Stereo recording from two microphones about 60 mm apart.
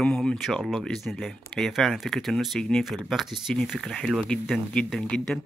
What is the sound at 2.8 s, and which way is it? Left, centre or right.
Speech, centre.